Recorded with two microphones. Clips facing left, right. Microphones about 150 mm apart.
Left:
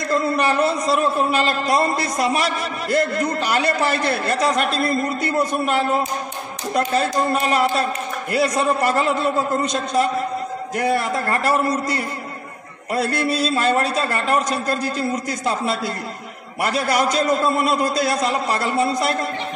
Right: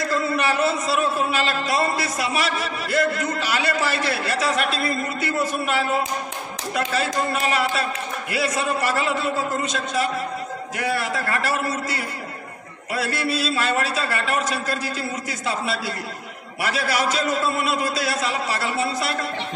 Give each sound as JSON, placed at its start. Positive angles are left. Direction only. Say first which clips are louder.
{"t": 0.1, "sound": "a sound", "louder": "left 6 dB", "side_deg": 45}
{"t": 0.8, "sound": "a man's voice", "louder": "left 3 dB", "side_deg": 45}
{"t": 6.7, "sound": "a man's voice", "louder": "left 4 dB", "side_deg": 40}
{"t": 13.5, "sound": "a man's voice", "louder": "left 4 dB", "side_deg": 40}